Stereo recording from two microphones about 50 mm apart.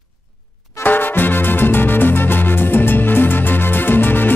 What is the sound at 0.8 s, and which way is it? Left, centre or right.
Music, left.